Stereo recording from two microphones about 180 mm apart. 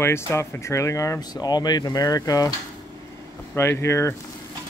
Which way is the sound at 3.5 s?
15° left (ahead or behind).